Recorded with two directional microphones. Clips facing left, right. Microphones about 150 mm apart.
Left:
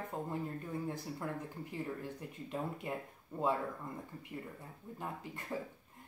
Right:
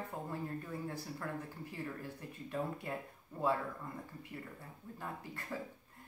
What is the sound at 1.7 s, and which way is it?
Speech, 20° left (ahead or behind).